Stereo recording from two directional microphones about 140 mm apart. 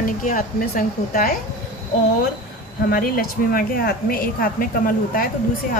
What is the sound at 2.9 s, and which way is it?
A woman's voice, 90° left.